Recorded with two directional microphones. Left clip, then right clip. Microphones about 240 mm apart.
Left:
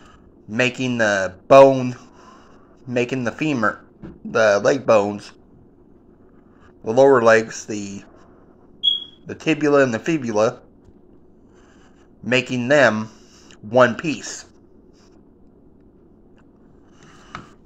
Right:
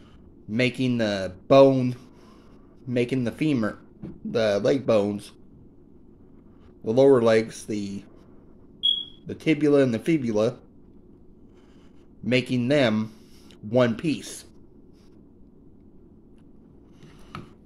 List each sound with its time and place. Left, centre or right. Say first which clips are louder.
0.5 s speech: left 4 dB; centre
6.8 s speech: left 4 dB; centre
9.2 s speech: left 3 dB; centre
12.3 s speech: left 5 dB; right